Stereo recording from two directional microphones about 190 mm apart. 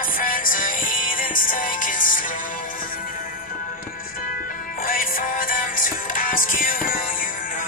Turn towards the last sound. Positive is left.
turn(degrees=45)  # may be behind; listen again after turning